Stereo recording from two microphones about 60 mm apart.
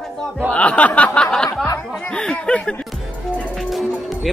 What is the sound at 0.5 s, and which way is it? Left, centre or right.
Speech, left.